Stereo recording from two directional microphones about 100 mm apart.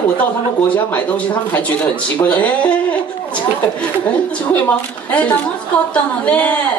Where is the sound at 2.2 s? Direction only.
15° left (ahead or behind).